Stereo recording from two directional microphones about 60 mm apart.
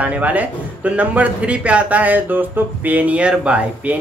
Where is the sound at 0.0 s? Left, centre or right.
Right.